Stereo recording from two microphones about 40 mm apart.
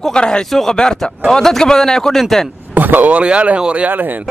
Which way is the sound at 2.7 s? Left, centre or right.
Right.